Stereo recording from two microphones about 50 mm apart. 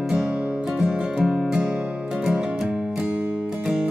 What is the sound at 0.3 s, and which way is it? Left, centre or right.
Music, right.